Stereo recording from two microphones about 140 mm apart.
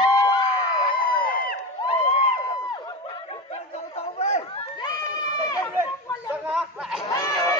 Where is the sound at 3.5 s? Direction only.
50° left (ahead or behind).